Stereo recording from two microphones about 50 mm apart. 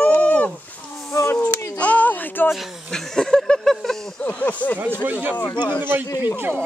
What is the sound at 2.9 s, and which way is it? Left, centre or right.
Speech, centre.